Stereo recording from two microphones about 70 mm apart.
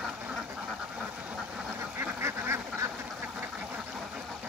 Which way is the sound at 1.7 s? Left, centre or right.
Right.